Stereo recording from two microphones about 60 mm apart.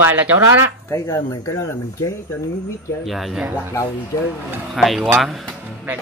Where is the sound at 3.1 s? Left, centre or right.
Centre.